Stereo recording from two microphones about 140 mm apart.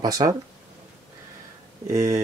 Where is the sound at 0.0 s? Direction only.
25° right (ahead or behind).